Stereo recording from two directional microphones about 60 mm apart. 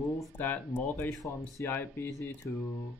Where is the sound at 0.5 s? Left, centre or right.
Left.